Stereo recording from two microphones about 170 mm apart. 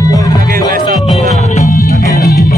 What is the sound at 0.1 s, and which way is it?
Music, 20° left (ahead or behind).